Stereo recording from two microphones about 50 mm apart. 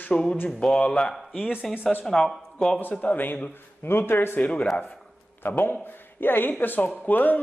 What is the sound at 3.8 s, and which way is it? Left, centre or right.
Speech, left.